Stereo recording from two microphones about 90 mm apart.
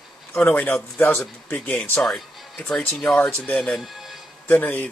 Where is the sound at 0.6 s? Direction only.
20° left (ahead or behind).